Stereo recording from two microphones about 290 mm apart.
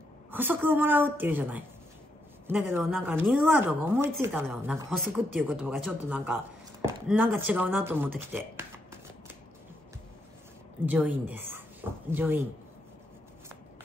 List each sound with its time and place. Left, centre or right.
0.3 s a woman's voice: centre
10.9 s speech: centre